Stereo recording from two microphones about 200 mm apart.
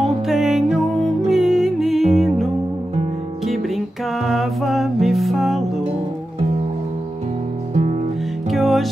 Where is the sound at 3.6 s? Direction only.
Centre (ahead or behind).